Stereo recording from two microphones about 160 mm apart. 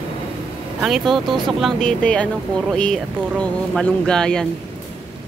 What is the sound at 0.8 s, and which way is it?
Speech, centre (ahead or behind).